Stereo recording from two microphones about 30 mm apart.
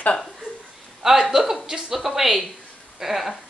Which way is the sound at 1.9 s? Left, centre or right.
Centre.